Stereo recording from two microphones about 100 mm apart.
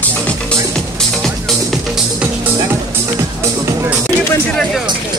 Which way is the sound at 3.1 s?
35° right (ahead or behind).